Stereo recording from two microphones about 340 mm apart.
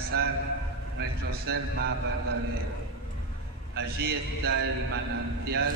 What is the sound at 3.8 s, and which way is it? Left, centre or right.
A man's voice, right.